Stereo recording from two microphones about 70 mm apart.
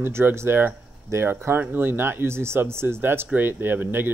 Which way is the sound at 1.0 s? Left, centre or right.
Right.